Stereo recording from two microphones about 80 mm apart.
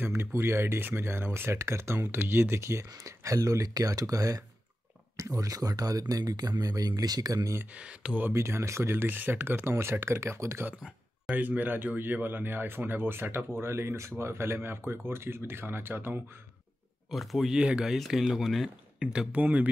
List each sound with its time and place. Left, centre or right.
0.1 s speech: right
7.7 s speech: centre
8.2 s speech: right
11.3 s speech: right
17.1 s speech: centre
17.6 s speech: centre
18.9 s speech: centre